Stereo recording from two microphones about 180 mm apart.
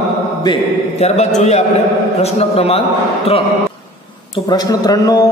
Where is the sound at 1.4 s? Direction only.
40° left (ahead or behind).